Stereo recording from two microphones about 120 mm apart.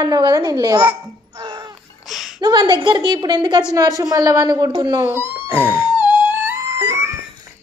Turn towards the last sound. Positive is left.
turn(degrees=-20)  # may be behind; listen again after turning